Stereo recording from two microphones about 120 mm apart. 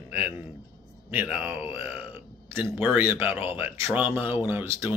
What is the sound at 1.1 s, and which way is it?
Speech, 15° right (ahead or behind).